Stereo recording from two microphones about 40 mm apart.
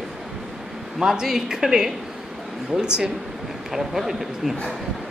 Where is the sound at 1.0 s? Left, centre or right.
Centre.